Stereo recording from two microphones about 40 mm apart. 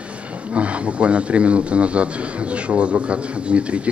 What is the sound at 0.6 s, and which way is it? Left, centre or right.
A man's voice, right.